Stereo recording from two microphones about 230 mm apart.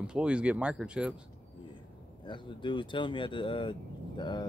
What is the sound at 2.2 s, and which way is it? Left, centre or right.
Speech, left.